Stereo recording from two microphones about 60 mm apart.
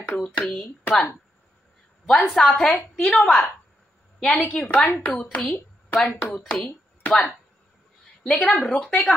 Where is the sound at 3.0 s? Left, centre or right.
Left.